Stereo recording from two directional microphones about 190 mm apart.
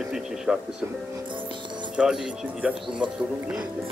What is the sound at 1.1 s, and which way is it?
Speech, 25° right (ahead or behind).